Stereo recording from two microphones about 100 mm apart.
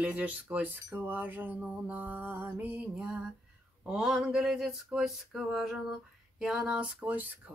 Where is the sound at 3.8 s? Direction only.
5° right (ahead or behind).